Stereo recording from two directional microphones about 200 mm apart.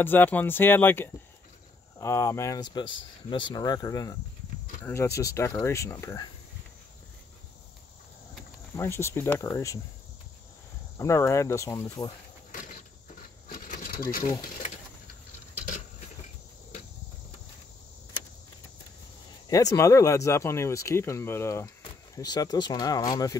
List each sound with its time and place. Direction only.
0.0 s speech: 10° left (ahead or behind)
8.7 s speech: 15° left (ahead or behind)
11.0 s speech: 15° left (ahead or behind)
13.5 s a sound: 45° left (ahead or behind)
19.5 s speech: 15° left (ahead or behind)